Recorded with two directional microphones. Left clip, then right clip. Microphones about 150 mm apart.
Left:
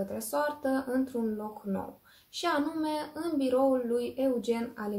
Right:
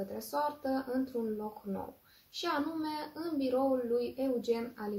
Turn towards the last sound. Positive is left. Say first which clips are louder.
# left 2 dB
turn(degrees=20)  # may be behind; listen again after turning